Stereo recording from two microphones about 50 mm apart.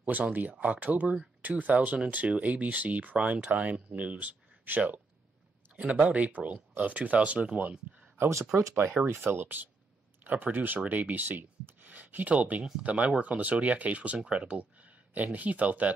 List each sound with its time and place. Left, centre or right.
0.0 s speech: right
9.1 s speech: right